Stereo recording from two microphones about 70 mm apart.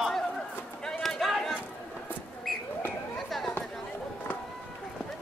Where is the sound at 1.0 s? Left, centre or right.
Centre.